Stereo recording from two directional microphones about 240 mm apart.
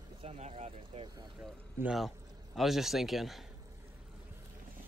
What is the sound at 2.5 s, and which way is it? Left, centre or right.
Speech, centre.